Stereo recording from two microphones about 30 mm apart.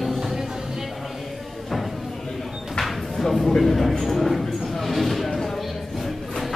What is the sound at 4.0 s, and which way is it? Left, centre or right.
Speech, centre.